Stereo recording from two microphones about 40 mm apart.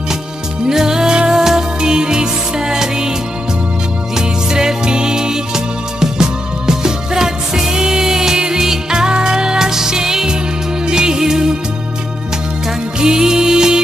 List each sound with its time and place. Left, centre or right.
0.7 s music: centre
4.5 s music: centre
13.0 s music: centre